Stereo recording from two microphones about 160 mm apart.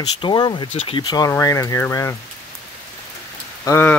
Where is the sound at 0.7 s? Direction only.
45° left (ahead or behind).